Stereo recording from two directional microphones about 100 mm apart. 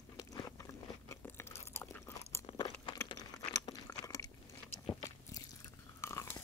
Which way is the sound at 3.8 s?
35° left (ahead or behind).